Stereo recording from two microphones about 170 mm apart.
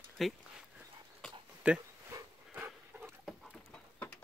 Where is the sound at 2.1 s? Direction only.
10° right (ahead or behind).